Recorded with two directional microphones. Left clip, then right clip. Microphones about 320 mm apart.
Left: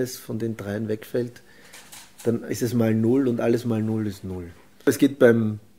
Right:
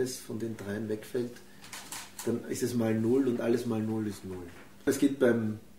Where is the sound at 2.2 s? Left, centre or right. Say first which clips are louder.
Left 7 dB; left.